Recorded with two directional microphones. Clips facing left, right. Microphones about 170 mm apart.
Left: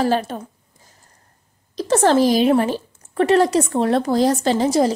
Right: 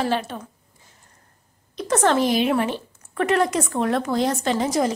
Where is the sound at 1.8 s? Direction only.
35° left (ahead or behind).